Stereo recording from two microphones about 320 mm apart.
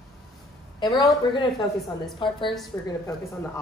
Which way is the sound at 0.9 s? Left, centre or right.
Centre.